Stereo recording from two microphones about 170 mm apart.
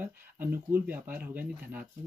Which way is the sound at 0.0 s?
10° right (ahead or behind).